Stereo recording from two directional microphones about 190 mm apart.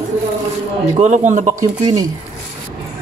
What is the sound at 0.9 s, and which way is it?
Speech, 40° right (ahead or behind).